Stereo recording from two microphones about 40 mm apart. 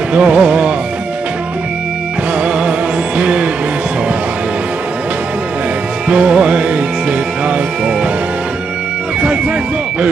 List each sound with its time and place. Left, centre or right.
0.1 s music: right
3.2 s music: right
6.0 s music: right